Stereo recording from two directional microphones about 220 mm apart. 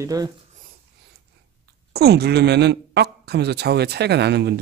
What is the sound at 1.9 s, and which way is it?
Speech, 45° right (ahead or behind).